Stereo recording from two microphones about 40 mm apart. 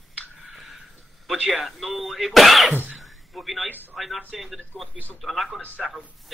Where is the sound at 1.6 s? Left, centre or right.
Centre.